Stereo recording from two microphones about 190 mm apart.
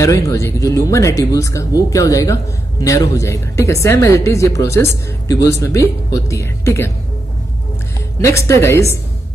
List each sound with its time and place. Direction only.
0.0 s speech: 15° left (ahead or behind)
8.2 s speech: 15° left (ahead or behind)